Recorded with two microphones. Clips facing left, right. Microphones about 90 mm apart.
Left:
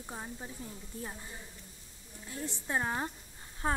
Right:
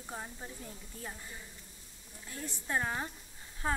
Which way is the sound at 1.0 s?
20° left (ahead or behind).